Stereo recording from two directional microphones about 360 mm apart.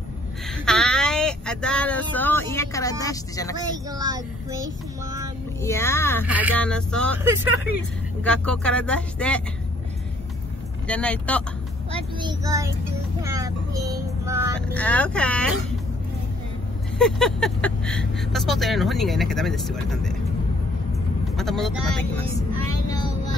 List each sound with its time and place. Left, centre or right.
0.7 s speech: centre
3.9 s child singing: centre
5.6 s speech: centre
6.2 s speech: centre
10.9 s speech: centre
11.9 s a child's voice: centre
13.2 s vehicle: centre
14.7 s speech: centre
17.0 s speech: centre
21.4 s speech: centre
22.8 s vehicle: centre